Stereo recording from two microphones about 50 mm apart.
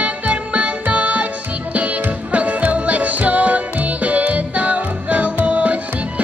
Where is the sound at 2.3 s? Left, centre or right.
Right.